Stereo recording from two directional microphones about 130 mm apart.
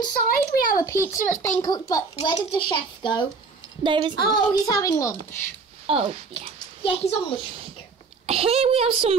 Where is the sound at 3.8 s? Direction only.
40° right (ahead or behind).